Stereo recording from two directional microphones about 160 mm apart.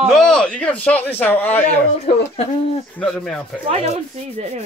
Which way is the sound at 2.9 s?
5° left (ahead or behind).